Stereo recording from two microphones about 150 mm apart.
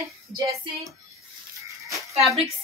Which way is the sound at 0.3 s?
20° right (ahead or behind).